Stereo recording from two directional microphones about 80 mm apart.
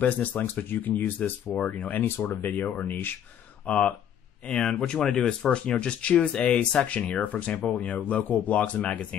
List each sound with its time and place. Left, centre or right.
0.0 s speech: left